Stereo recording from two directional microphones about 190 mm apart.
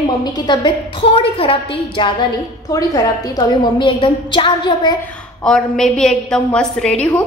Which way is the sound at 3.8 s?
25° left (ahead or behind).